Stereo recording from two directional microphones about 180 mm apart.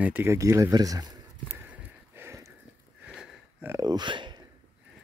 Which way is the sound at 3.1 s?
Centre (ahead or behind).